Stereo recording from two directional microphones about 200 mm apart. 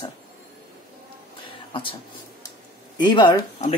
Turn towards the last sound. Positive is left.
turn(degrees=30)  # may be behind; listen again after turning